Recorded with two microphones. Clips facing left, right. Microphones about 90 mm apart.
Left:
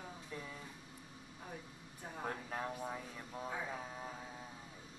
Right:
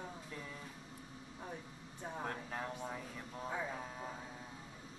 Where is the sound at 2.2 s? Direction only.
5° left (ahead or behind).